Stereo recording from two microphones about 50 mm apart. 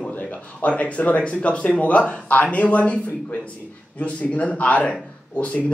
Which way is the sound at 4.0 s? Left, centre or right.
Left.